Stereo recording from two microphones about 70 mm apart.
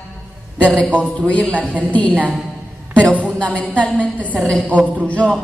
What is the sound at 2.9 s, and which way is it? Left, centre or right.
A woman's voice, centre.